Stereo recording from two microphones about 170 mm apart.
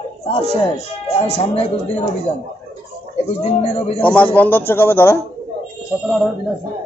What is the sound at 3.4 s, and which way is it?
Speech, 35° left (ahead or behind).